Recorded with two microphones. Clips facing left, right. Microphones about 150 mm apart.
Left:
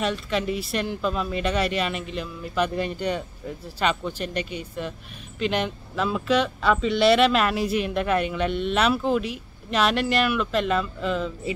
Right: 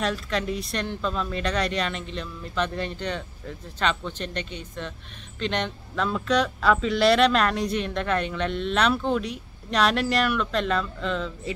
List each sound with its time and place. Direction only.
0.0 s speech: 5° left (ahead or behind)